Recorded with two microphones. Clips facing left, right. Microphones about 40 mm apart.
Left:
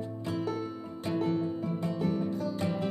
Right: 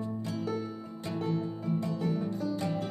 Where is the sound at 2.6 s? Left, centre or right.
Left.